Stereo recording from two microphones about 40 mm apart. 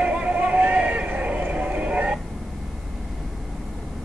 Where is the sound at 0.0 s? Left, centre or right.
Right.